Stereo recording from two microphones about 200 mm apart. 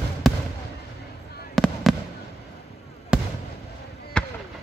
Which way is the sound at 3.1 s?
5° right (ahead or behind).